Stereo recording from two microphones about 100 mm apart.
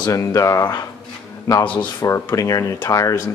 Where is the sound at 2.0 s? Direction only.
30° left (ahead or behind).